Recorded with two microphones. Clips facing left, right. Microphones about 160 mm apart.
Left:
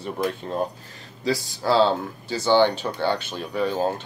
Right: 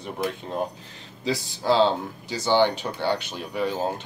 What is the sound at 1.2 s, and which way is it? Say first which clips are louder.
Speech: left 2 dB; 20° right (ahead or behind).